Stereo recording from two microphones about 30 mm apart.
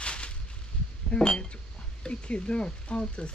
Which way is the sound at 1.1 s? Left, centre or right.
Left.